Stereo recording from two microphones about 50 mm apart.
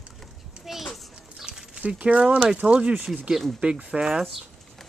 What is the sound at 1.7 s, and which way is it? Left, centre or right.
A woman's voice, right.